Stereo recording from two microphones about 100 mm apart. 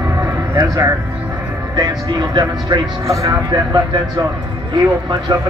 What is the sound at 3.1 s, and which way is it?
Speech, 35° right (ahead or behind).